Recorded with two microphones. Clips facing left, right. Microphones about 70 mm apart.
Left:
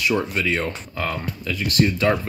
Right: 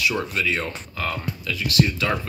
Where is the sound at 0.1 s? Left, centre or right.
Left.